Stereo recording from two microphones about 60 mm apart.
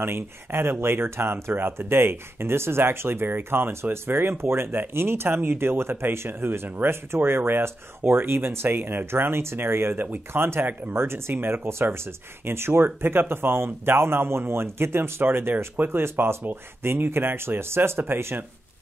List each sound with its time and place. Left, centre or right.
0.0 s speech: right